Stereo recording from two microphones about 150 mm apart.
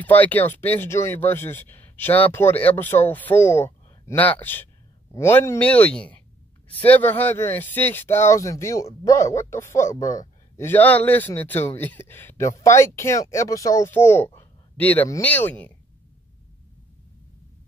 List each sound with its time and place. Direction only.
0.0 s a man's voice: 10° left (ahead or behind)